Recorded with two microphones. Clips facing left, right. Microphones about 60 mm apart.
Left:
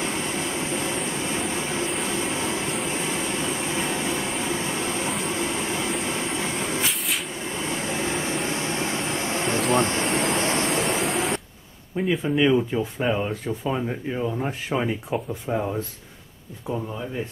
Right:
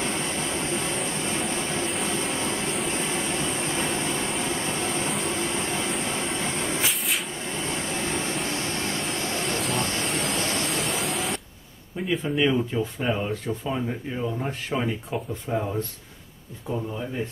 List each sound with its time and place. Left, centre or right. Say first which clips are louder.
0.0 s vehicle: left 1 dB; centre; by 9.4 s left
9.6 s vehicle: left 5 dB; centre
12.1 s speech: left 3 dB; centre